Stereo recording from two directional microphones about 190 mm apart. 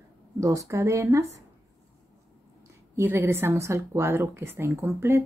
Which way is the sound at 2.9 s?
10° right (ahead or behind).